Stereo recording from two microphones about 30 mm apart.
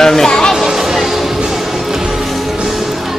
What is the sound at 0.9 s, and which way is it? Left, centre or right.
Music, centre.